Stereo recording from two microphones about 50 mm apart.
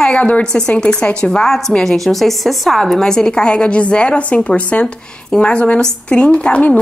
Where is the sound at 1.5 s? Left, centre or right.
Centre.